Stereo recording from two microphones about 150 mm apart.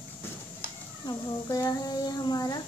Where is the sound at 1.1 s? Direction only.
20° left (ahead or behind).